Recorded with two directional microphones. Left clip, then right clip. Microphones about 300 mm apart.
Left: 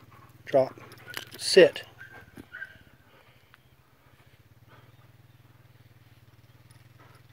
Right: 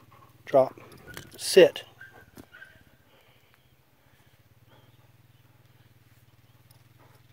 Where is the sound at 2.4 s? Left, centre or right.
Right.